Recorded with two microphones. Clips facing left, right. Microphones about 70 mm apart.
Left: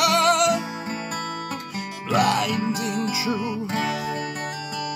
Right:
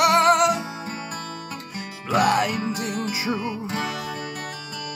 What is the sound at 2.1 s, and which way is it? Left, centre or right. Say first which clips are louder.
Music: right 1 dB; right.